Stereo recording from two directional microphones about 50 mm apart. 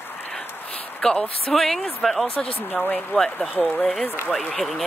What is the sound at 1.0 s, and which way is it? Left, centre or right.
Speech, centre.